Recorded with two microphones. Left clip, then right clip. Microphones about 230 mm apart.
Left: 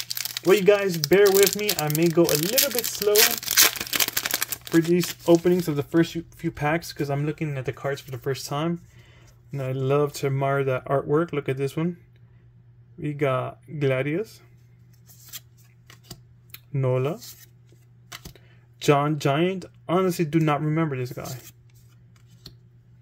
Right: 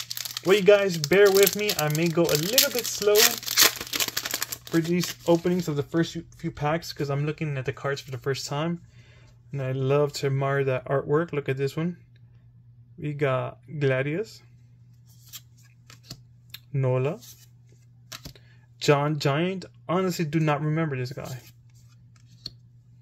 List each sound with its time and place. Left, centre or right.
0.1 s speech: centre
6.9 s speech: centre
13.0 s speech: centre
16.5 s speech: centre